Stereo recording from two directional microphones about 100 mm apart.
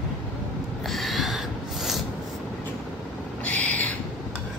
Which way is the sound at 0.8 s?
Centre (ahead or behind).